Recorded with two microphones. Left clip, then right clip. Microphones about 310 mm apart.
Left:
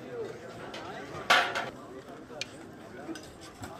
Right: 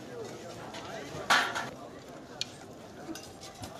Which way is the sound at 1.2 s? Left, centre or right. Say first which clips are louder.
Left 2 dB; left.